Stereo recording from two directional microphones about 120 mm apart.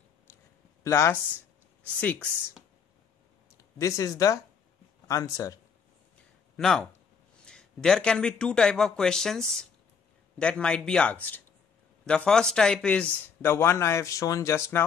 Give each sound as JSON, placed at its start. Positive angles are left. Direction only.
{"t": 0.8, "sound": "a man's voice", "side_deg": 25}
{"t": 3.5, "sound": "a man's voice", "side_deg": 25}
{"t": 6.5, "sound": "a man's voice", "side_deg": 5}